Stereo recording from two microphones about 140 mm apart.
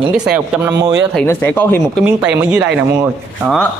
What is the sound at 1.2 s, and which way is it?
Speech, 15° left (ahead or behind).